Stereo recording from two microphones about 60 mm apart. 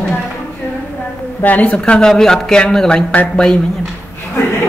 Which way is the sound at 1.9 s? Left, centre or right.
Centre.